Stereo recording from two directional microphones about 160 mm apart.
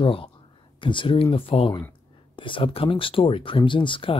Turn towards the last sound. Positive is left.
turn(degrees=30)  # may be behind; listen again after turning